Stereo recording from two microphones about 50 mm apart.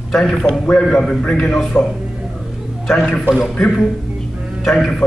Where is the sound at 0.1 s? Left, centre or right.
Centre.